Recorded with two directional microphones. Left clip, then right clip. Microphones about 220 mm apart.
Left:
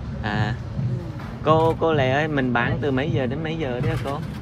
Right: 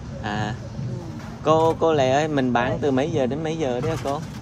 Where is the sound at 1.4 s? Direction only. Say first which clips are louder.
Even; 20° right (ahead or behind).